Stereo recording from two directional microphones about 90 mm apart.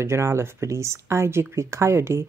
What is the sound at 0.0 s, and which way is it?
Speech, 30° right (ahead or behind).